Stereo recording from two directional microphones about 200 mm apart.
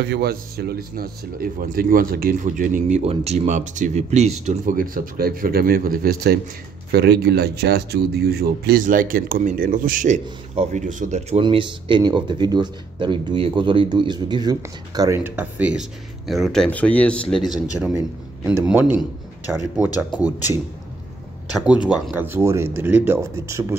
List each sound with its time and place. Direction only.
0.0 s speech: 55° right (ahead or behind); by 17.6 s centre (ahead or behind)
18.4 s speech: 10° right (ahead or behind)
21.6 s speech: 5° right (ahead or behind)